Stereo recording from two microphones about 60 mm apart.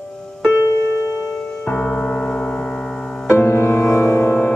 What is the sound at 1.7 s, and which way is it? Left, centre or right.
Music, centre.